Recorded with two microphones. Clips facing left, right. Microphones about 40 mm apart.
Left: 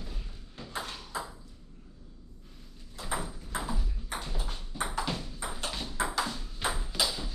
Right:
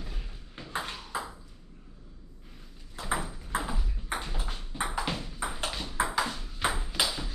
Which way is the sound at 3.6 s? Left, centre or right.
Right.